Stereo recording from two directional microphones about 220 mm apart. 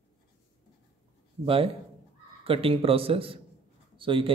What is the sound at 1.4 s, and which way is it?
A man's voice, 25° right (ahead or behind).